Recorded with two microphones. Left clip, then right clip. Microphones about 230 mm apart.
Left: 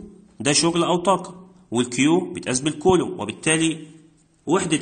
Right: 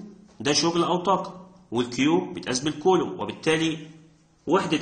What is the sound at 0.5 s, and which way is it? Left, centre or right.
Speech, left.